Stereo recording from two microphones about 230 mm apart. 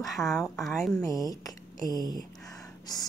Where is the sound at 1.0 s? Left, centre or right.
Centre.